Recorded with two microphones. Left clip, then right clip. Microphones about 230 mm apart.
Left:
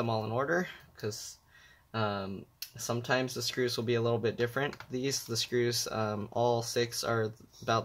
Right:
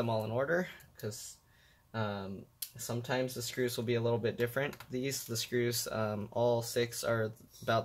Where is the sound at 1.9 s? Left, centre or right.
Left.